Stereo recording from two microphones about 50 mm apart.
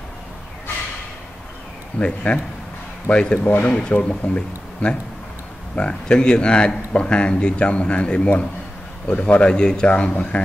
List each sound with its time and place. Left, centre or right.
2.0 s speech: left
5.8 s speech: centre